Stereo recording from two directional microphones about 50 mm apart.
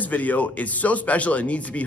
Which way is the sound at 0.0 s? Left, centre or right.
Left.